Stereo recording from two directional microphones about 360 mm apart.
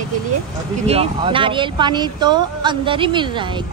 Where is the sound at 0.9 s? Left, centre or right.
Centre.